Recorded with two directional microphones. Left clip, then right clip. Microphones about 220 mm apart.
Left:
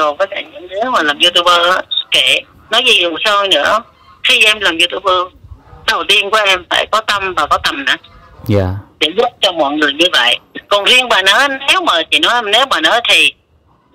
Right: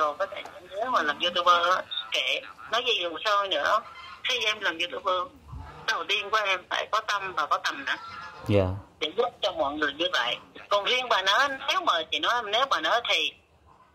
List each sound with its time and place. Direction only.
0.0 s a man's voice: 40° left (ahead or behind)
8.5 s speech: 30° left (ahead or behind)